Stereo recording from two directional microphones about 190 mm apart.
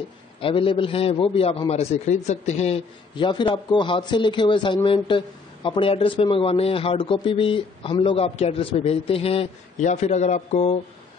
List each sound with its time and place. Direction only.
0.4 s a man's voice: 25° left (ahead or behind)